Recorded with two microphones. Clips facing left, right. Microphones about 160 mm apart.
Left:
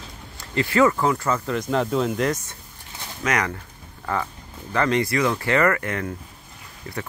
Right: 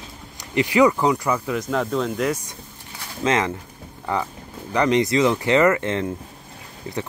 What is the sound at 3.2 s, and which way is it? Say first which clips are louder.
Speech: right 3 dB; 25° right (ahead or behind).